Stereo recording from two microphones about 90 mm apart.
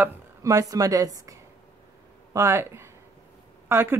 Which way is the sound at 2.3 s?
30° right (ahead or behind).